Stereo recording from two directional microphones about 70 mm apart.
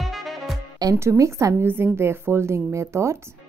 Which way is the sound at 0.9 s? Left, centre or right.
Right.